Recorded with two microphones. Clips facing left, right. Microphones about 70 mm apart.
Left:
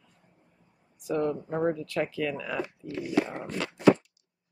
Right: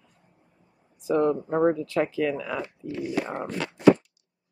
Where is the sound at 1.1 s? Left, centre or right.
Right.